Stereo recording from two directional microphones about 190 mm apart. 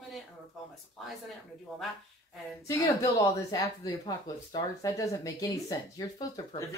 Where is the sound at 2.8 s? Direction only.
20° left (ahead or behind).